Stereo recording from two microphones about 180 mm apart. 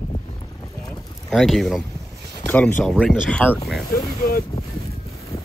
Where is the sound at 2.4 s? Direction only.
5° left (ahead or behind).